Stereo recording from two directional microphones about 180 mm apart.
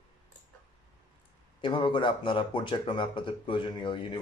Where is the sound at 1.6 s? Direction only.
25° left (ahead or behind).